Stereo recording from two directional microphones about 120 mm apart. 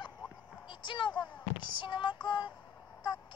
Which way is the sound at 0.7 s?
40° left (ahead or behind).